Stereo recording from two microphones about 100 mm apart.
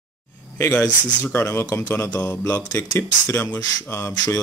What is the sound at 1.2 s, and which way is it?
Speech, 20° left (ahead or behind).